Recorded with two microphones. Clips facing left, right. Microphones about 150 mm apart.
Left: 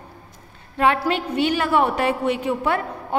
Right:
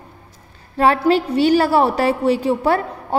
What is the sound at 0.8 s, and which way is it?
A woman's voice, 35° right (ahead or behind).